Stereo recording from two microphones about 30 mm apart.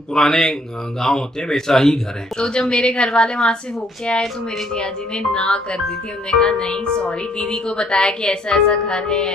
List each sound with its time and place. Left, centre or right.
0.1 s speech: centre
3.3 s speech: left
4.7 s a woman's voice: left